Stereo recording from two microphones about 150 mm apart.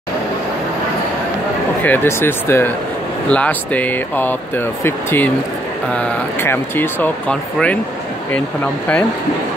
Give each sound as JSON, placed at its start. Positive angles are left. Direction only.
{"t": 1.8, "sound": "speech", "side_deg": 15}